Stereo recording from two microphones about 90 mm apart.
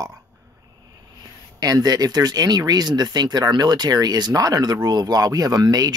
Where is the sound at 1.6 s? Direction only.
45° right (ahead or behind).